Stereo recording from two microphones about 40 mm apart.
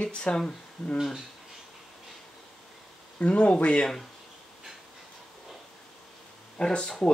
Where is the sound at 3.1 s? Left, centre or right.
Left.